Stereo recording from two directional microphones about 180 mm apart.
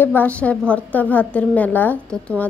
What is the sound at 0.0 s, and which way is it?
A woman's voice, 10° left (ahead or behind).